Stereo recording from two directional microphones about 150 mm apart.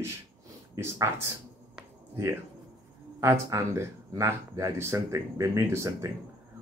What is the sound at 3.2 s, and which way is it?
Speech, 20° right (ahead or behind).